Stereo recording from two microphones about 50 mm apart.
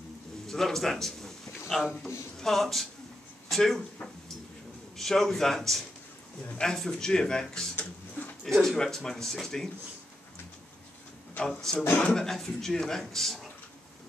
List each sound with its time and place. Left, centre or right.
0.5 s a man's voice: centre
2.4 s a man's voice: centre
4.9 s a man's voice: centre
7.7 s a sound: left
8.6 s speech: centre
11.4 s speech: centre
12.3 s a man's voice: centre